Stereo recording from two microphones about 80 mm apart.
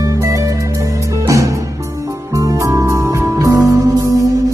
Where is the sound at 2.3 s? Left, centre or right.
Right.